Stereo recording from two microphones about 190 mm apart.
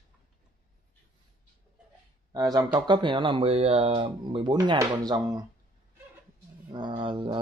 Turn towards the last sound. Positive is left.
turn(degrees=-25)  # may be behind; listen again after turning